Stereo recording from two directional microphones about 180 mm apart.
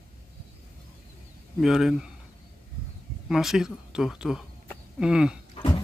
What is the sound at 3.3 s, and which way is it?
A man's voice, 5° right (ahead or behind).